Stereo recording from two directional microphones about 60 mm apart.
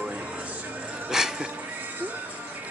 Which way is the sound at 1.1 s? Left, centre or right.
Centre.